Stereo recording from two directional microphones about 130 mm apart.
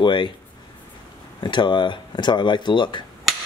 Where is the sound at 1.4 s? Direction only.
35° left (ahead or behind).